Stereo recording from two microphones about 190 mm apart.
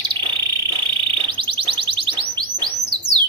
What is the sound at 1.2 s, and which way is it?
Music, 25° right (ahead or behind).